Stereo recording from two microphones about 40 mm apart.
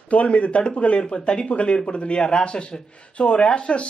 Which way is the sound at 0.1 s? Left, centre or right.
Left.